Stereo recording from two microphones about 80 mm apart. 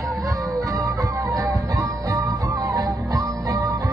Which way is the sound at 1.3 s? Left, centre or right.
Right.